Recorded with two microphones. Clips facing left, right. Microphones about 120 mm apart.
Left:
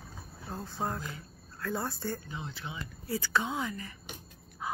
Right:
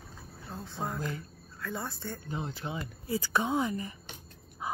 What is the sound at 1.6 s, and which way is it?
Music, centre (ahead or behind).